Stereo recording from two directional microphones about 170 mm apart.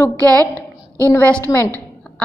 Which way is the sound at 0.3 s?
20° right (ahead or behind).